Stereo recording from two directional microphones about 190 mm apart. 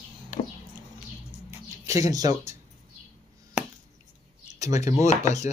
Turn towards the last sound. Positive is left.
turn(degrees=-15)  # may be behind; listen again after turning